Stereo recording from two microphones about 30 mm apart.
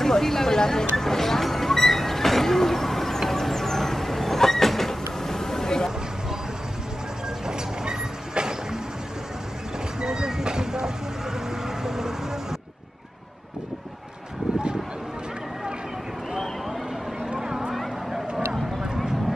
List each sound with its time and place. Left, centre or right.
0.0 s music: centre
7.4 s vehicle: right
9.9 s vehicle: right
17.3 s vehicle: centre